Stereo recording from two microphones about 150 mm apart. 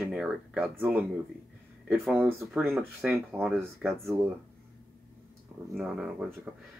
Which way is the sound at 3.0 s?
15° right (ahead or behind).